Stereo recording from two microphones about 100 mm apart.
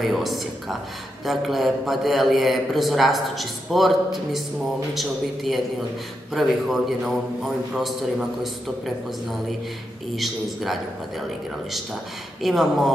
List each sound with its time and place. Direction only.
0.0 s a man's voice: centre (ahead or behind)
10.1 s a man's voice: centre (ahead or behind)
12.4 s a man's voice: centre (ahead or behind)